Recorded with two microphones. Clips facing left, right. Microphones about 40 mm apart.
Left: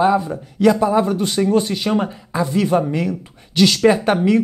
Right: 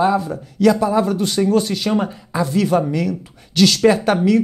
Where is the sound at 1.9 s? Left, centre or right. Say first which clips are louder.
Even; centre.